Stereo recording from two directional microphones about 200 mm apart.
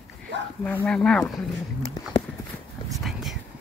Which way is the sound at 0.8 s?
5° left (ahead or behind).